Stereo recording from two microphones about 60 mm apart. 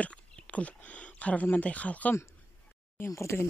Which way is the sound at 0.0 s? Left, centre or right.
Left.